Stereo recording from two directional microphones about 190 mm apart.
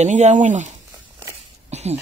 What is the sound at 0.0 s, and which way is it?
Speech, 40° right (ahead or behind).